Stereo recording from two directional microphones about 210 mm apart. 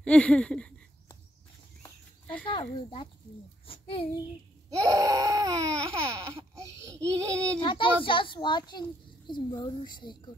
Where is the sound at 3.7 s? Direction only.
25° left (ahead or behind).